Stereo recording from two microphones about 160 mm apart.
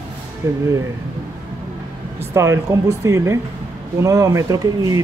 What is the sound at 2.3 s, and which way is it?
Speech, 15° right (ahead or behind).